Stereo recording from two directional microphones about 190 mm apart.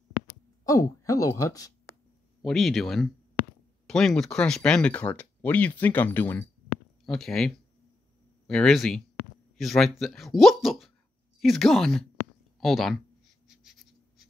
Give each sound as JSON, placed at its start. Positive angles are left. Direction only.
{"t": 0.7, "sound": "speech", "side_deg": 15}
{"t": 2.4, "sound": "speech", "side_deg": 0}
{"t": 13.5, "sound": "a sound", "side_deg": 0}